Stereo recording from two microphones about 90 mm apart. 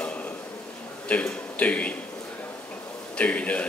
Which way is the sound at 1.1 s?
15° left (ahead or behind).